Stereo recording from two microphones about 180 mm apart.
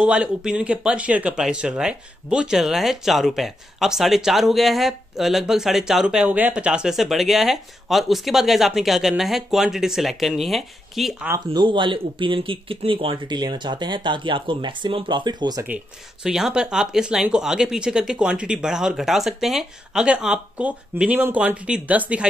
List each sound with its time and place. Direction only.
0.0 s speech: 5° right (ahead or behind)
11.3 s speech: 25° right (ahead or behind)
15.6 s speech: 5° right (ahead or behind)